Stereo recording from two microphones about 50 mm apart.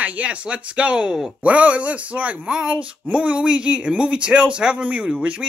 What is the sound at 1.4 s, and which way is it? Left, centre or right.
Speech, right.